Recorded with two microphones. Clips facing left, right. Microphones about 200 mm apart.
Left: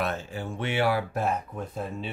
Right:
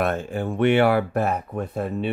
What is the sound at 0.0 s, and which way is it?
Speech, 55° right (ahead or behind).